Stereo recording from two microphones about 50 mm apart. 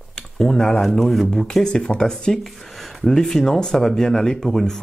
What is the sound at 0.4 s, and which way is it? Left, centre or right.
Speech, centre.